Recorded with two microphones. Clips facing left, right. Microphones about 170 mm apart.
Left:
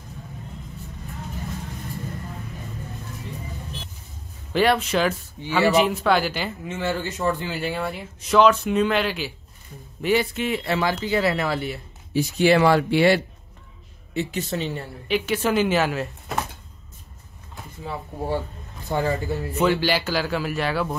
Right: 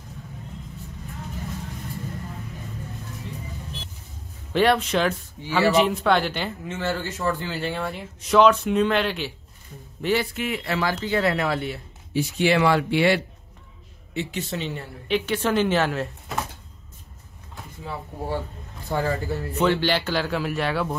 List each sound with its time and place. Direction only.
4.5 s speech: centre (ahead or behind)
10.0 s speech: 20° left (ahead or behind)
11.0 s speech: 5° left (ahead or behind)
12.1 s speech: 40° left (ahead or behind)
15.0 s speech: 5° left (ahead or behind)
17.8 s speech: 20° left (ahead or behind); by 20.9 s centre (ahead or behind)